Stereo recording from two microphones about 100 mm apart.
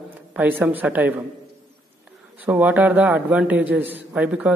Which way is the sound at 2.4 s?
15° right (ahead or behind).